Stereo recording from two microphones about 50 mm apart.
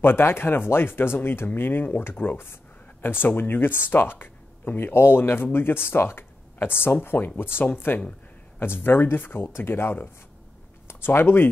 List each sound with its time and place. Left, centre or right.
0.0 s speech: left